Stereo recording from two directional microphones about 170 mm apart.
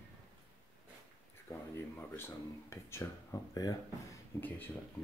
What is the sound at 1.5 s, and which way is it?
Speech, 10° left (ahead or behind).